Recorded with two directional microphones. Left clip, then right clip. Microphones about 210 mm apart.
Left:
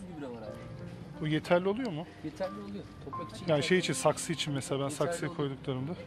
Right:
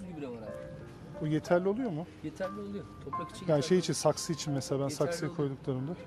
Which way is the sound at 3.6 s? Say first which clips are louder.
Left 1 dB; 25° right (ahead or behind).